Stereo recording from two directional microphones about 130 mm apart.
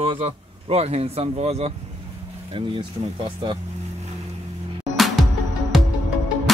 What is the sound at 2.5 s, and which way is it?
Speech, 45° right (ahead or behind).